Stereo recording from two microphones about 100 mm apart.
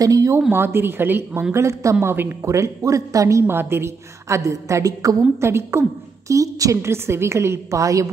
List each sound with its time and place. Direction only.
0.0 s speech: 35° right (ahead or behind)
0.5 s speech: 20° right (ahead or behind)